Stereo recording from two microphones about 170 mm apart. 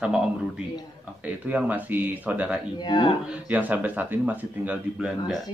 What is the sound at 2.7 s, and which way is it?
Speech, 25° left (ahead or behind).